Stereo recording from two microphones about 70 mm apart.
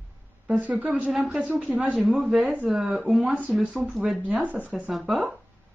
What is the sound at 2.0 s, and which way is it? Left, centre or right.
Speech, centre.